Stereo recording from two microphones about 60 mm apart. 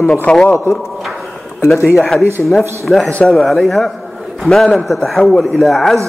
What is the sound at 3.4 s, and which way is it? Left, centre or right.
A man's voice, centre.